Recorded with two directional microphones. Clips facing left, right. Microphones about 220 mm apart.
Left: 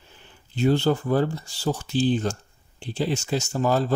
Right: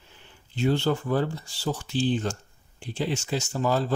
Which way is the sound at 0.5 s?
40° left (ahead or behind).